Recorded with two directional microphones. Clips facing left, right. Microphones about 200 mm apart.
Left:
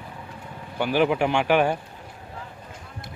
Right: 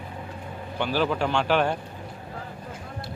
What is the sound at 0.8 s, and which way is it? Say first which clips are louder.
Speech: left 4 dB; 15° left (ahead or behind).